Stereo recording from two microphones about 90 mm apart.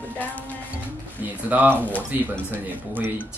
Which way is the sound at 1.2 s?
20° right (ahead or behind).